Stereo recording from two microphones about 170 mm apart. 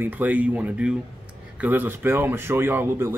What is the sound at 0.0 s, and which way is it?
Speech, 10° right (ahead or behind).